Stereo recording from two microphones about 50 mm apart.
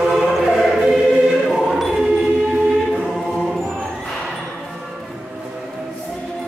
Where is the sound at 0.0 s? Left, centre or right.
Centre.